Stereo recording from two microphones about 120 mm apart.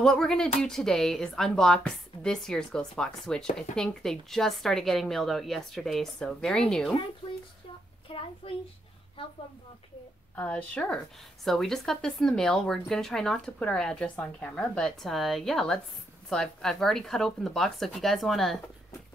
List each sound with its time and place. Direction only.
0.0 s speech: 5° left (ahead or behind)
8.1 s a child's voice: 50° left (ahead or behind)
10.3 s a woman's voice: 10° left (ahead or behind)